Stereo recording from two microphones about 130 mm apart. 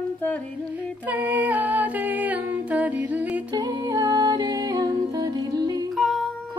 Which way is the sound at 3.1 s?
10° right (ahead or behind).